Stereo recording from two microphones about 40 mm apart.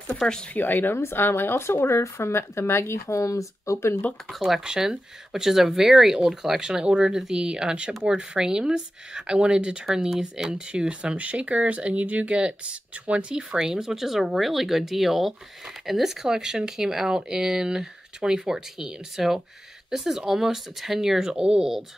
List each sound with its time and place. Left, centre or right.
0.2 s speech: left
0.6 s a woman's voice: left
0.9 s speech: left
4.4 s speech: centre
10.0 s speech: centre; by 13.4 s right
13.4 s speech: centre